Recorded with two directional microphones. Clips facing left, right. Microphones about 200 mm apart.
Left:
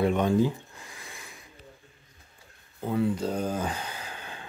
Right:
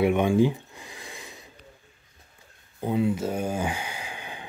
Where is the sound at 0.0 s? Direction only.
15° right (ahead or behind).